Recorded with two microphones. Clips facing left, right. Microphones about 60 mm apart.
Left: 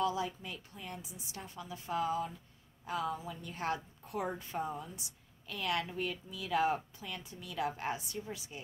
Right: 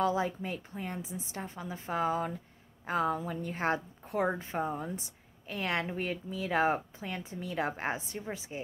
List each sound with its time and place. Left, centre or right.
0.0 s a woman's voice: right